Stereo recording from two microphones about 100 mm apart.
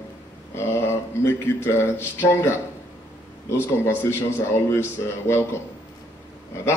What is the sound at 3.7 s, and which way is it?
Speech, 25° left (ahead or behind).